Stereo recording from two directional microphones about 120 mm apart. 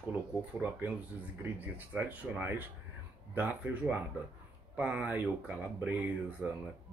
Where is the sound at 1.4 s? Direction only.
15° right (ahead or behind).